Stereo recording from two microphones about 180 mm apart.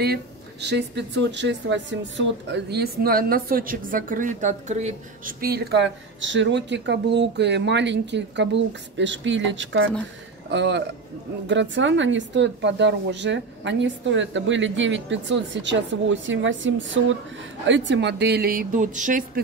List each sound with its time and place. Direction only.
0.0 s speech: 65° right (ahead or behind); by 5.3 s 40° right (ahead or behind)
5.4 s speech: 65° right (ahead or behind)
8.9 s a woman's voice: 90° right
10.5 s speech: 75° right (ahead or behind)
11.4 s a woman's voice: 90° right; by 19.4 s 45° right (ahead or behind)